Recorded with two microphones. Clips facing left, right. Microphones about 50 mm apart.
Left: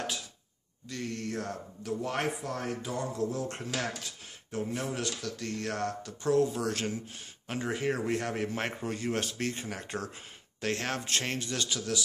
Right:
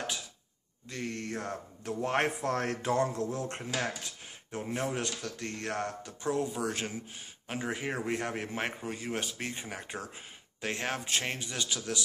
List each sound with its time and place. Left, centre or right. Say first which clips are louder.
0.8 s speech: left 1 dB; right
2.4 s a sound: right 4 dB; right
3.3 s a man's voice: left 1 dB; right